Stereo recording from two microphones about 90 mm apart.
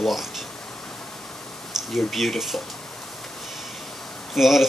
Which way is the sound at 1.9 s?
Centre (ahead or behind).